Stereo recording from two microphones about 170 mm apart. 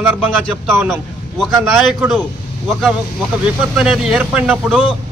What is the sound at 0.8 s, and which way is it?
Speech, centre (ahead or behind).